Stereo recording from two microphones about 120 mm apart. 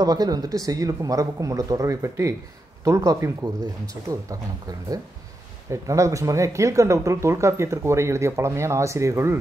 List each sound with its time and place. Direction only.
0.0 s speech: 30° right (ahead or behind)